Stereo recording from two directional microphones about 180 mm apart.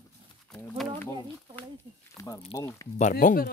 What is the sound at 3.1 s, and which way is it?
Speech, 50° left (ahead or behind).